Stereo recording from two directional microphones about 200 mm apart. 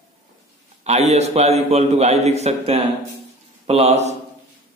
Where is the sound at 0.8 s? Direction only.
35° right (ahead or behind).